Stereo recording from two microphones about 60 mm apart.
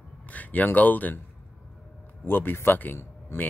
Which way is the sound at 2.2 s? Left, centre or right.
Left.